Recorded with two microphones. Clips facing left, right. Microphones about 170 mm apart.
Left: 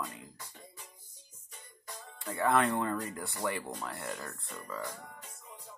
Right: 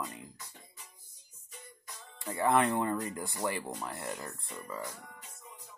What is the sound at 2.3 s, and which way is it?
Speech, 15° right (ahead or behind).